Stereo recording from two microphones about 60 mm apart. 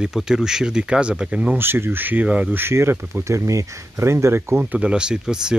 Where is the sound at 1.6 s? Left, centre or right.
Right.